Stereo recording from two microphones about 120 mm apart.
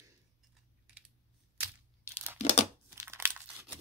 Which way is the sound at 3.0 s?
15° right (ahead or behind).